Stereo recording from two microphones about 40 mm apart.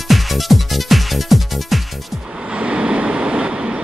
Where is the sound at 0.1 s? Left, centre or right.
Centre.